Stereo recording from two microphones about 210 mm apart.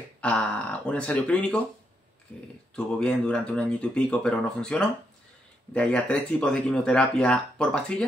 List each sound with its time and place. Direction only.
0.2 s speech: 5° left (ahead or behind)
2.7 s speech: 5° left (ahead or behind)